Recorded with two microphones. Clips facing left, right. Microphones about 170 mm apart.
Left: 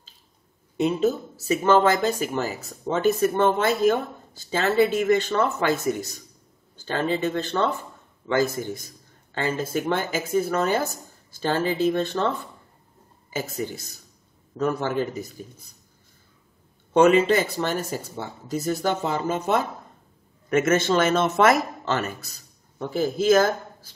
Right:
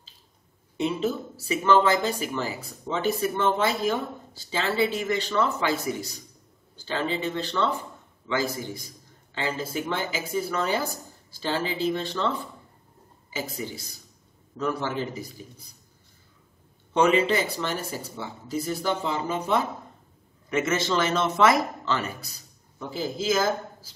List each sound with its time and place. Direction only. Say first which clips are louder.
0.7 s speech: left 4 dB; 40° left (ahead or behind)
13.3 s speech: left 4 dB; 50° left (ahead or behind)
16.9 s a man's voice: left 4 dB; 45° left (ahead or behind)